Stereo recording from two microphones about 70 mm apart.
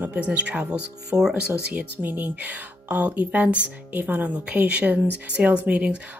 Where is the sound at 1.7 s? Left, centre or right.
Right.